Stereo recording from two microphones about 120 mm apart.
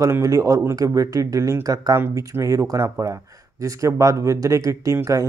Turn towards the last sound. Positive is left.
turn(degrees=-25)  # may be behind; listen again after turning